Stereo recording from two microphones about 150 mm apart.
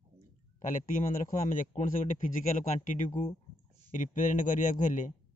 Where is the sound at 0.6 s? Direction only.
60° left (ahead or behind).